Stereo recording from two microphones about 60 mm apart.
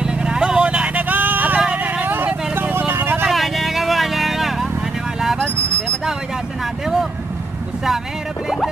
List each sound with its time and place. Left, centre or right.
0.0 s vehicle: centre; by 3.3 s right
3.3 s vehicle: centre
6.6 s vehicle: centre